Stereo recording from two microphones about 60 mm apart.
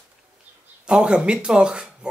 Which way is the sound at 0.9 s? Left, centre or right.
Centre.